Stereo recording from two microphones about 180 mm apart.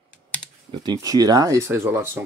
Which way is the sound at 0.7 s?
20° right (ahead or behind).